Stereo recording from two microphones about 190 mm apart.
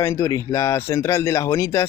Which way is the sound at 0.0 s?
15° left (ahead or behind).